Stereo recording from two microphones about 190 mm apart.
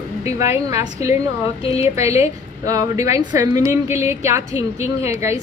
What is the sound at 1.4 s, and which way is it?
Speech, 30° left (ahead or behind).